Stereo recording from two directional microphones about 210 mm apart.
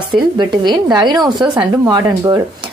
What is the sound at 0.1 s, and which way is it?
Speech, 20° right (ahead or behind).